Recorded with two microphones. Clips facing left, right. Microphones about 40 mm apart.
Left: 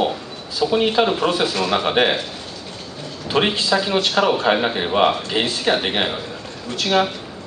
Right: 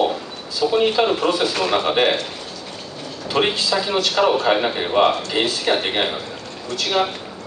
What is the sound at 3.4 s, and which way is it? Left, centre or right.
A man's voice, centre.